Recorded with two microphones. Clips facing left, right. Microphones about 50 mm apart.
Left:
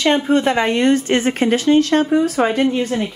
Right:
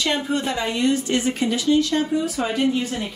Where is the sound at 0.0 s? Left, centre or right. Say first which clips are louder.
Left 8 dB; left.